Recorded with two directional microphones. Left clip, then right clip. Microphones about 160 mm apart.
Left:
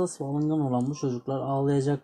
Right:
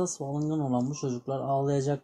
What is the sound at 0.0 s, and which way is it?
Speech, 40° left (ahead or behind).